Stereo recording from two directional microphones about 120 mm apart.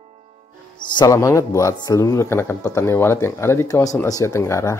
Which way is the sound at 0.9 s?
30° left (ahead or behind).